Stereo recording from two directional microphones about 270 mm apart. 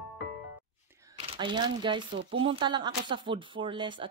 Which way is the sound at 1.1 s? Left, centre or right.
Centre.